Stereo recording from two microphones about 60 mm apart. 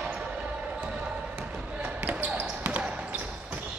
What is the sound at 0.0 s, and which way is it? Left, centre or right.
Basketball bounce, centre.